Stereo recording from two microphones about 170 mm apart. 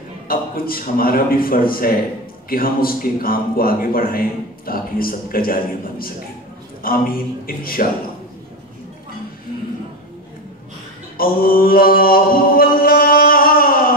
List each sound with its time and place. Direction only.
0.3 s a man's voice: 60° left (ahead or behind)
11.1 s mantra: 60° left (ahead or behind)